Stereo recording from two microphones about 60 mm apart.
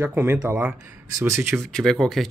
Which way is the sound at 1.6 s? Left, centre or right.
Centre.